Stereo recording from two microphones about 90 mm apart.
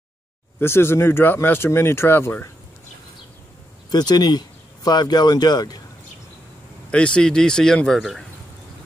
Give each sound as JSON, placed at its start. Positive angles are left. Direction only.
{"t": 0.6, "sound": "speech", "side_deg": 25}
{"t": 3.9, "sound": "speech", "side_deg": 50}
{"t": 6.9, "sound": "speech", "side_deg": 10}